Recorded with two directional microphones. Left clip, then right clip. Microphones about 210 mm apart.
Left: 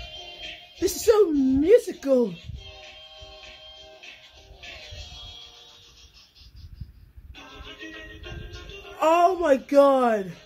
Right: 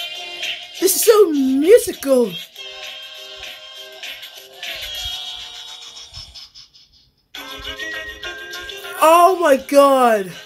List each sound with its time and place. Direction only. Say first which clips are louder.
0.7 s speech: right 7 dB; 10° right (ahead or behind)
7.6 s music: right 13 dB; 45° right (ahead or behind)
9.0 s speech: right 8 dB; 10° right (ahead or behind)